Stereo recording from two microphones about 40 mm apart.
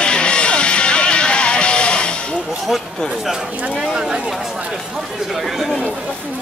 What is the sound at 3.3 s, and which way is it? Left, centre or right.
Speech, centre.